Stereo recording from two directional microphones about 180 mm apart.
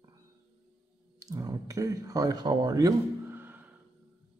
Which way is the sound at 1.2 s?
20° right (ahead or behind).